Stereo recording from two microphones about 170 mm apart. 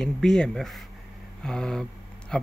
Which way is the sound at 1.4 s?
5° left (ahead or behind).